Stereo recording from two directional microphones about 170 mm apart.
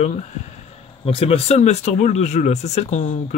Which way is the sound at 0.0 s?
40° left (ahead or behind).